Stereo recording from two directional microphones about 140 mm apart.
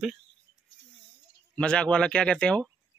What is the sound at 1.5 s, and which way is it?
Speech, 5° left (ahead or behind).